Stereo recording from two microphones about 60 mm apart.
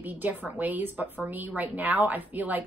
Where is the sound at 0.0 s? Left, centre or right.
Right.